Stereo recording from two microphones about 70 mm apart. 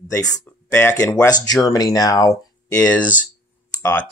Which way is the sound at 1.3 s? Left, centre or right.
Left.